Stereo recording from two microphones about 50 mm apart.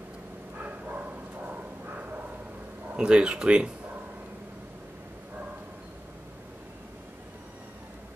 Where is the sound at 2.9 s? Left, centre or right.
Centre.